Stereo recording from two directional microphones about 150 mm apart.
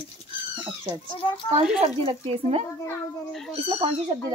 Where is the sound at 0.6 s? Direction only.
30° right (ahead or behind).